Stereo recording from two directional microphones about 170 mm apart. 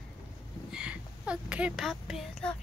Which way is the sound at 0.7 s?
5° right (ahead or behind).